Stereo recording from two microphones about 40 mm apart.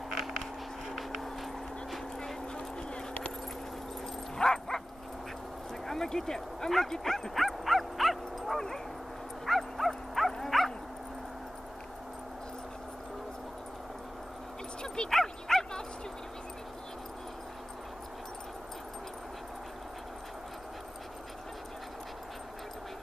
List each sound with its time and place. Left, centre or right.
0.1 s a sound: centre
0.4 s a sound: centre
2.1 s dog: centre
4.4 s bow-wow: centre
5.9 s speech: centre
7.3 s bow-wow: centre
9.5 s dog: centre
15.0 s bow-wow: centre